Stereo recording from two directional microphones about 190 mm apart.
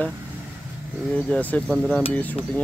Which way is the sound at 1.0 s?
5° left (ahead or behind).